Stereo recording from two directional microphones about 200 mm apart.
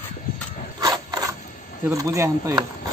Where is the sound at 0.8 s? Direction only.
20° right (ahead or behind).